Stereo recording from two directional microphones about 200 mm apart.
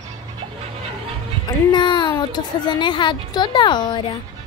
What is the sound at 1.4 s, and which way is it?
Speech, 20° left (ahead or behind).